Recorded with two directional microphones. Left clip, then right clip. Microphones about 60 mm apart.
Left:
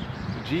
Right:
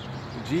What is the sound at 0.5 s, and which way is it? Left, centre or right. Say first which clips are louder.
Speech: right 1 dB; right.